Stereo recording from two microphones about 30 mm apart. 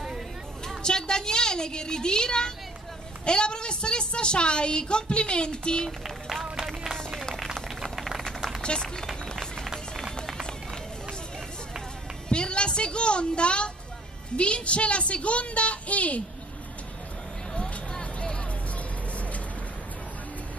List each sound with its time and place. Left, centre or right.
0.8 s a woman's voice: left
6.6 s run: centre
8.6 s run: left
12.3 s music: left
14.3 s a woman's voice: left
17.6 s vehicle: left